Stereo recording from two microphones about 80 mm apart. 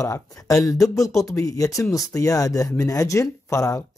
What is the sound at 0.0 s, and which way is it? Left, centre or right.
Speech, left.